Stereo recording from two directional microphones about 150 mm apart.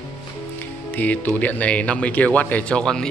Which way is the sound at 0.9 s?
10° left (ahead or behind).